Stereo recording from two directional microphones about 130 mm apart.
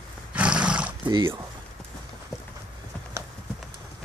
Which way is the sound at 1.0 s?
35° right (ahead or behind).